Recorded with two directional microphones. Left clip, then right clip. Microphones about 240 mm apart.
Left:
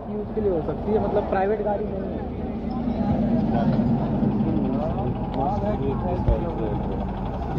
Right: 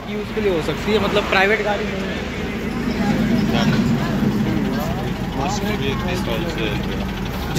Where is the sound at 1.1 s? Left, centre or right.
Right.